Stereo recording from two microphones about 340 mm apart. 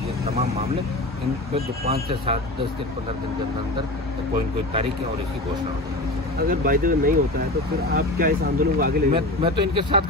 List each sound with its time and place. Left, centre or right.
0.2 s speech: centre
6.5 s speech: right